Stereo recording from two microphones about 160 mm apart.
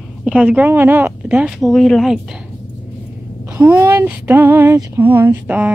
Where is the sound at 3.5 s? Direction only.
10° right (ahead or behind).